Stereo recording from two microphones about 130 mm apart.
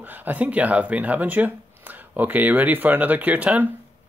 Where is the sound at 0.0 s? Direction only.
15° right (ahead or behind).